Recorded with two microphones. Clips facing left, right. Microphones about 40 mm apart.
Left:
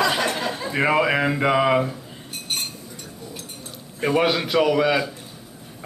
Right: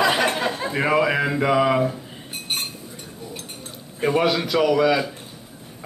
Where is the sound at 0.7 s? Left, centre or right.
Centre.